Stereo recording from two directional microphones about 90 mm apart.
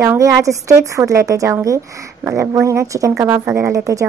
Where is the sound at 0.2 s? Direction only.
40° right (ahead or behind).